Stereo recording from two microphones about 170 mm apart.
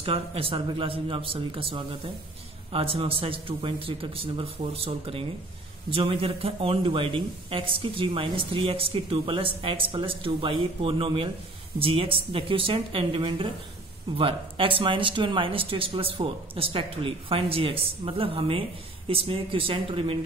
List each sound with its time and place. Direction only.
0.0 s speech: 35° right (ahead or behind)